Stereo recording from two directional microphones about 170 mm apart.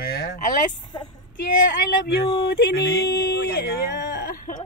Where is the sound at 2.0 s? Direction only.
75° left (ahead or behind); by 4.6 s 50° left (ahead or behind).